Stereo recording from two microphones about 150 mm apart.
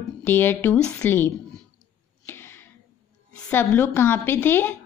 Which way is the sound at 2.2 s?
15° left (ahead or behind).